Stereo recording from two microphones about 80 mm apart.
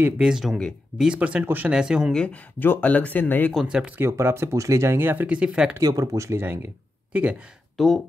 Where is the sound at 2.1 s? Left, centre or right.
Centre.